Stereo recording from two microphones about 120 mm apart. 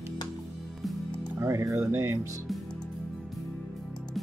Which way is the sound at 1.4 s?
25° right (ahead or behind).